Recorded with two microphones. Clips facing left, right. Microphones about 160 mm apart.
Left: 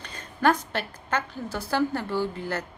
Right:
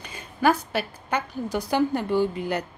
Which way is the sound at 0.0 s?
10° right (ahead or behind).